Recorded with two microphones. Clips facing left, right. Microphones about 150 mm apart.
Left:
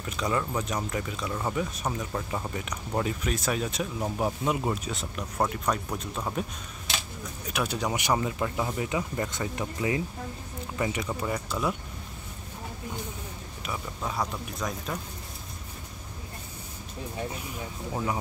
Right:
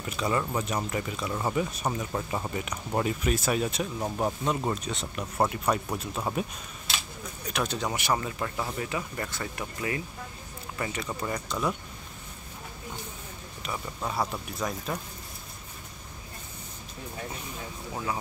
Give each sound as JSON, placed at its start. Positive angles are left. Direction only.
{"t": 0.0, "sound": "speech", "side_deg": -5}
{"t": 7.4, "sound": "speech", "side_deg": 10}
{"t": 13.6, "sound": "speech", "side_deg": 0}